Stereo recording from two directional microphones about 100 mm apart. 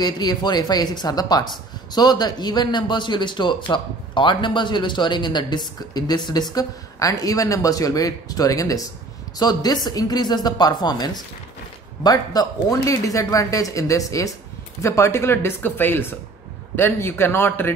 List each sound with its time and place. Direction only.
0.0 s speech: 45° left (ahead or behind); by 17.7 s 20° left (ahead or behind)